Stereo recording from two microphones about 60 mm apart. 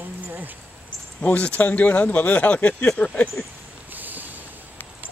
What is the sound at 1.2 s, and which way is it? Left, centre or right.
Speech, left.